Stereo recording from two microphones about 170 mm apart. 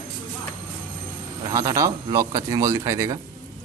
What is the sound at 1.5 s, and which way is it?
Speech, 20° right (ahead or behind).